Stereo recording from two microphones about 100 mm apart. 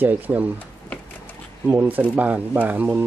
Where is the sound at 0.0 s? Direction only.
20° right (ahead or behind).